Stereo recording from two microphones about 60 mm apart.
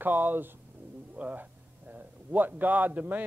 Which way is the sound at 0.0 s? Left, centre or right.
Right.